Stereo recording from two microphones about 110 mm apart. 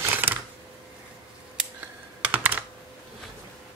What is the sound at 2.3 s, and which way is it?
Computer keyboard, 15° right (ahead or behind).